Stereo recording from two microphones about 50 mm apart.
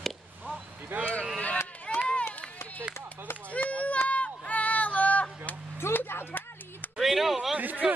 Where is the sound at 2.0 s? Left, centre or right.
Left.